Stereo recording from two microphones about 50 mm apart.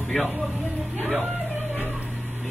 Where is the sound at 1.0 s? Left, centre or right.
Right.